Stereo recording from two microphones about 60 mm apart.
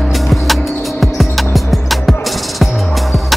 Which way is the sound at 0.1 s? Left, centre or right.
Centre.